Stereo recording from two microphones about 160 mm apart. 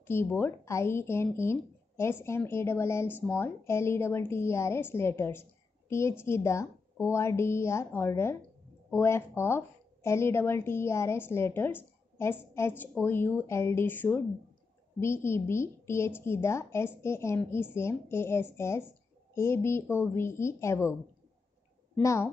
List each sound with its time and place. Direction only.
0.0 s a woman's voice: 15° left (ahead or behind)
22.0 s a woman's voice: 20° left (ahead or behind)